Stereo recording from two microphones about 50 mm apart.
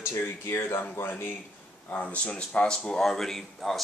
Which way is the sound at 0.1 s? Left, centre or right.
Left.